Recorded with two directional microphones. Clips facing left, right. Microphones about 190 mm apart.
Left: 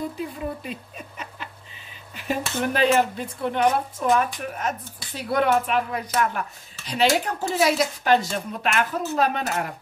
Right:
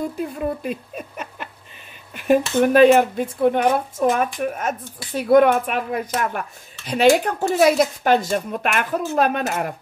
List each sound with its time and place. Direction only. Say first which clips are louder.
0.2 s speech: right 6 dB; 55° right (ahead or behind)